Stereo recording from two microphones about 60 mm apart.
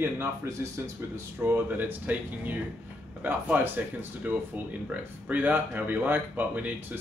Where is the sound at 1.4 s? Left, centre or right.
Right.